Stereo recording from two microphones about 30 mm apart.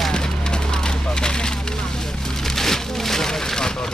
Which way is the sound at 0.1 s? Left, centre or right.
Left.